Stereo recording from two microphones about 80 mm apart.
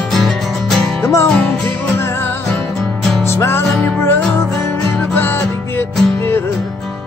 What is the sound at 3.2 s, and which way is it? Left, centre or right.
Music, left.